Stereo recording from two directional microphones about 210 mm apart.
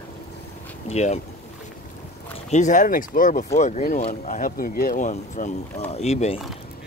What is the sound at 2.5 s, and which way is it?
Speech, 35° left (ahead or behind).